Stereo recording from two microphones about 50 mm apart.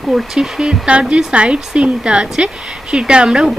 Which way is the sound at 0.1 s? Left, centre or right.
Centre.